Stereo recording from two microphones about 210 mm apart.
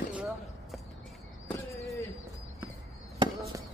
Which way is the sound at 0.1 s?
5° right (ahead or behind).